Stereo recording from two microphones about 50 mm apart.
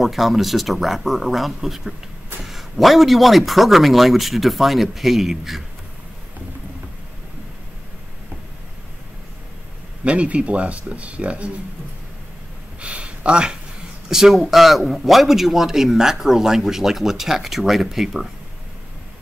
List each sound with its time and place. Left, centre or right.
0.0 s speech: centre
10.0 s speech: right
12.8 s a sound: right
14.0 s speech: centre